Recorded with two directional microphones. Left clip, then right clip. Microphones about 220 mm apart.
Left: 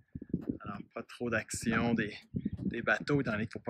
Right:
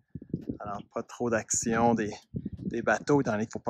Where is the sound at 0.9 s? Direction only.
15° right (ahead or behind).